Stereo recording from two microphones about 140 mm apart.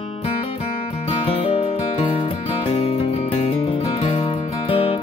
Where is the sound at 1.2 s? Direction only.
40° left (ahead or behind).